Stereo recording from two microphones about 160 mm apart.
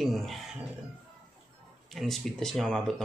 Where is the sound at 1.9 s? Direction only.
Centre (ahead or behind).